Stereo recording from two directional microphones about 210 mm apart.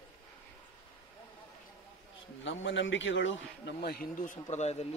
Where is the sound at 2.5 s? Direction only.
60° left (ahead or behind); by 4.9 s 30° left (ahead or behind).